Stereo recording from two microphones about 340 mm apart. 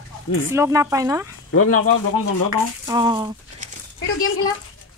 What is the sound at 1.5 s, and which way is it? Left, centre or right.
Speech, left.